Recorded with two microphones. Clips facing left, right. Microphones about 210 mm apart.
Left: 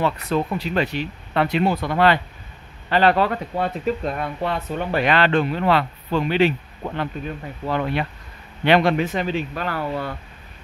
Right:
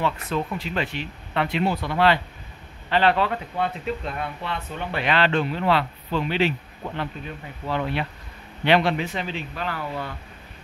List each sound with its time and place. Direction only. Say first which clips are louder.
0.0 s speech: left 4 dB; 40° left (ahead or behind)
7.6 s speech: left 3 dB; 50° left (ahead or behind)